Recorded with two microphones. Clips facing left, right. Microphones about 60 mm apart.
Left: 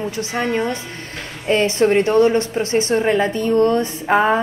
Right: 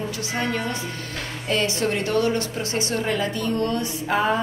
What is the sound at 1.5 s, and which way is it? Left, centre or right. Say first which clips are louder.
Speech: left 8 dB; left.